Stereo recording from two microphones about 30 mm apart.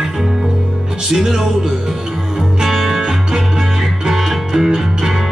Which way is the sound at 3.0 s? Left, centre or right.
Right.